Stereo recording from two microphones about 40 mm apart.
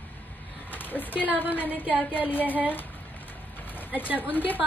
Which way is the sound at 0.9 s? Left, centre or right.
Left.